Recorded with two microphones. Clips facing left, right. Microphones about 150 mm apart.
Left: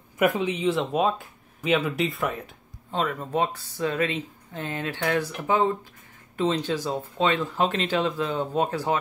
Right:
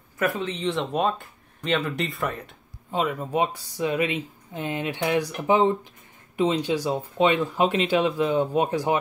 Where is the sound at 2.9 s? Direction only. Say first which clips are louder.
Right 1 dB; 10° right (ahead or behind).